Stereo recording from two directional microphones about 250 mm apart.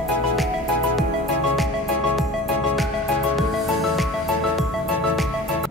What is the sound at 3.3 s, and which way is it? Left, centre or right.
Music, centre.